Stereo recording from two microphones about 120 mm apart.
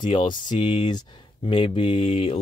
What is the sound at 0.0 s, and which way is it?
Speech, 45° left (ahead or behind).